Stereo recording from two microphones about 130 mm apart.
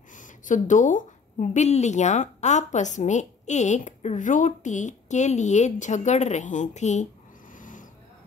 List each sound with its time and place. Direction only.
0.1 s a woman's voice: 80° left
7.5 s vehicle: 90° left